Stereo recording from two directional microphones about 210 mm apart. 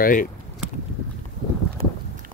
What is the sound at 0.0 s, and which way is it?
Speech, 40° left (ahead or behind).